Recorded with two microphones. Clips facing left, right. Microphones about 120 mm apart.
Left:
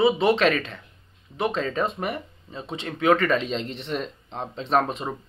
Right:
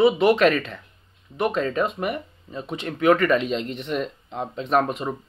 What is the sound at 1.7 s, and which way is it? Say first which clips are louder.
Speech: right 2 dB; 35° left (ahead or behind).